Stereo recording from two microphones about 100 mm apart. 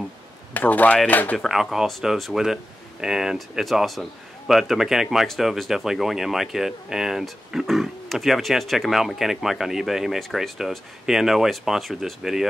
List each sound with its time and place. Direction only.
0.5 s speech: 15° left (ahead or behind)
1.4 s speech: 5° right (ahead or behind)